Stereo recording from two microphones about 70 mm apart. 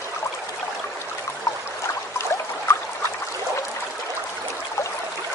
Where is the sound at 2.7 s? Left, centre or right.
Left.